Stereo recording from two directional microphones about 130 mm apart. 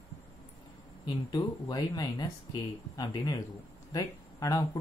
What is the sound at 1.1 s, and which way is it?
Speech, 35° left (ahead or behind).